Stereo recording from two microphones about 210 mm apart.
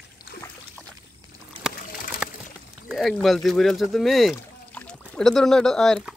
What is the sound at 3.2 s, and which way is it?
Speech, centre (ahead or behind).